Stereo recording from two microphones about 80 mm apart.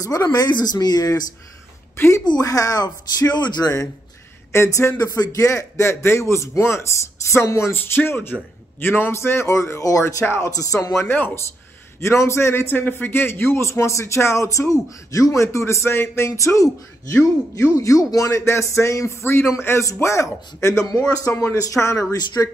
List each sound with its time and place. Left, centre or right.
0.0 s speech: left
2.0 s a woman's voice: left
2.2 s speech: left
4.5 s speech: left
4.9 s a man's voice: left
10.2 s a man's voice: left
10.5 s speech: left
11.1 s a man's voice: left